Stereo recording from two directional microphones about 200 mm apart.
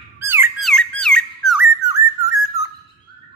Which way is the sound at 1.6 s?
15° right (ahead or behind).